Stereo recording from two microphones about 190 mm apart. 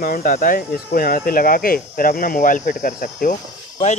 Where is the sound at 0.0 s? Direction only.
45° left (ahead or behind).